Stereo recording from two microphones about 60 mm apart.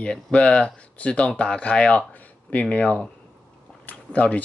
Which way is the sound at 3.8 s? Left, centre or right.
Left.